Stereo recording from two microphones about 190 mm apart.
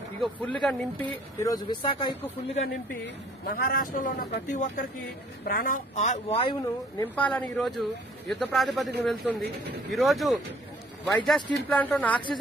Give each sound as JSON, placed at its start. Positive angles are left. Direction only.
{"t": 0.2, "sound": "speech", "side_deg": 5}
{"t": 1.4, "sound": "speech", "side_deg": 20}
{"t": 3.4, "sound": "a man's voice", "side_deg": 50}
{"t": 6.6, "sound": "speech", "side_deg": 15}
{"t": 7.2, "sound": "speech", "side_deg": 5}